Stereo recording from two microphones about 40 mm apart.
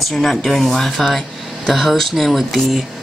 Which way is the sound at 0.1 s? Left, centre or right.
Centre.